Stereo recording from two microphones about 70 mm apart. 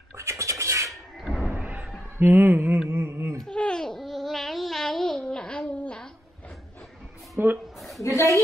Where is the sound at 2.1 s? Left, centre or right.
Right.